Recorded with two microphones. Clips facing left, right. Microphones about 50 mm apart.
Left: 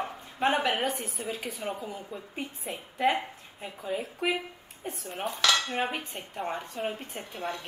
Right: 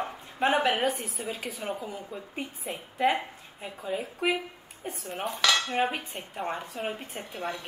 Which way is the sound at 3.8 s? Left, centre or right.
Centre.